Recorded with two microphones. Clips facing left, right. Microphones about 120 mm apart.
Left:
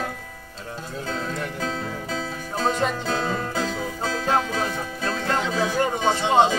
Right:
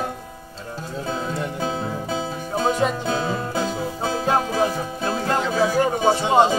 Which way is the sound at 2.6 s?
5° right (ahead or behind).